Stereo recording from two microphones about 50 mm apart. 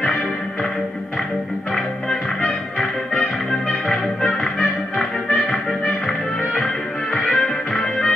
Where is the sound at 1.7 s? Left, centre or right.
Centre.